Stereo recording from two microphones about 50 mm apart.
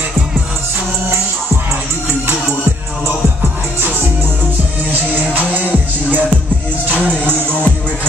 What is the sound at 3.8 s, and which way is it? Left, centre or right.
Music, right.